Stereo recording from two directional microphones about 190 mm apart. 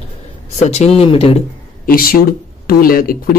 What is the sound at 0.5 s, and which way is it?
Speech, 35° left (ahead or behind).